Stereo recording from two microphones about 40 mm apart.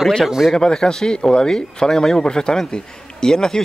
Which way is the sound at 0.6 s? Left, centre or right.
Centre.